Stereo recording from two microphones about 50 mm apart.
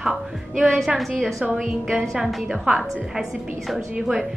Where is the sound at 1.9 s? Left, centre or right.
Centre.